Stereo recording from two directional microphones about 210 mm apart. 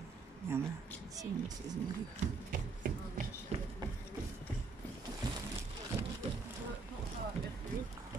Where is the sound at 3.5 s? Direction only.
30° right (ahead or behind).